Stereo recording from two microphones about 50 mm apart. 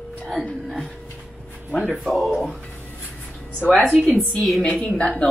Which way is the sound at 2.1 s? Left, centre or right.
Centre.